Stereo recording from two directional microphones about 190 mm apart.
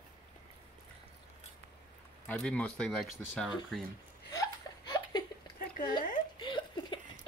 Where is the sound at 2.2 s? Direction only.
10° left (ahead or behind).